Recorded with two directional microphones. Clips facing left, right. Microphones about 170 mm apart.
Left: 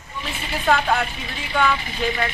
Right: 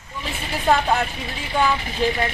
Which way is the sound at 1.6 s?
30° right (ahead or behind).